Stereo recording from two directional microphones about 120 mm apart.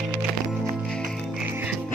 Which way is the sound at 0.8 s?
5° left (ahead or behind).